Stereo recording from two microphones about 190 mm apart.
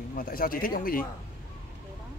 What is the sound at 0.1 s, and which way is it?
Speech, 50° left (ahead or behind).